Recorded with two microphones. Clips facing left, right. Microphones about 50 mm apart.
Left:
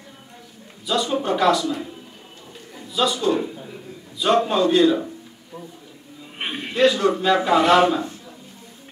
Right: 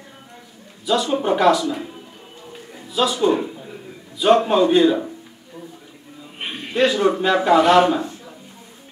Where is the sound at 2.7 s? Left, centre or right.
Centre.